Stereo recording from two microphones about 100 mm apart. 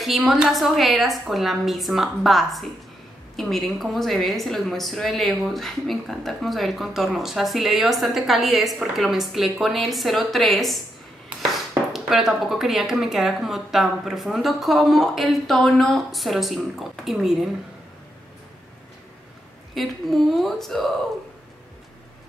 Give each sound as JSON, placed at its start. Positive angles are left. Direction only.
{"t": 0.0, "sound": "a woman's voice", "side_deg": 0}
{"t": 11.9, "sound": "a woman's voice", "side_deg": -5}
{"t": 19.7, "sound": "a woman's voice", "side_deg": 0}